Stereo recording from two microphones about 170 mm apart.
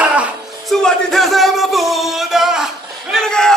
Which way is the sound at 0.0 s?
10° right (ahead or behind).